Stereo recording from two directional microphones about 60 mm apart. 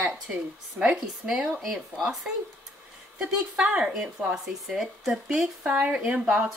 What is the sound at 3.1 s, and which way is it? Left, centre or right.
Speech, centre.